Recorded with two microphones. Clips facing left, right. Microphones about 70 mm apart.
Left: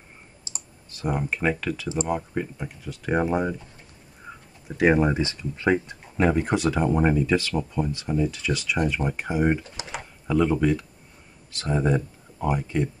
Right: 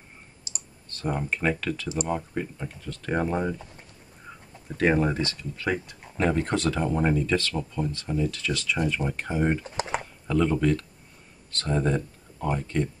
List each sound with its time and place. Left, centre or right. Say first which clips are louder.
0.8 s speech: left 2 dB; centre
4.6 s speech: left 3 dB; centre
6.1 s speech: left 3 dB; centre
9.8 s typing: right 6 dB; right
10.2 s speech: left 2 dB; centre